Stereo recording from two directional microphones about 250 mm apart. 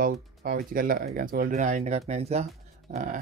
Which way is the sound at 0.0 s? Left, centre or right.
Right.